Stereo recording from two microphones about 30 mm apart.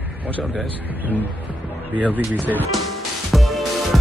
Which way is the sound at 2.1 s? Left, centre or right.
Right.